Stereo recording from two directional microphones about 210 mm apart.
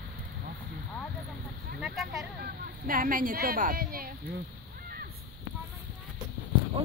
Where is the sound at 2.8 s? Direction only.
40° right (ahead or behind).